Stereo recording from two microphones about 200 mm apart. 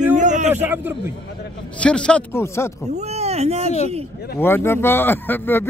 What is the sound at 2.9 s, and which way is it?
Speech, 35° right (ahead or behind).